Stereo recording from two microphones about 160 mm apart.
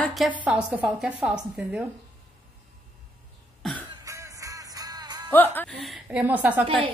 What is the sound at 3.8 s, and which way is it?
Music, 20° right (ahead or behind).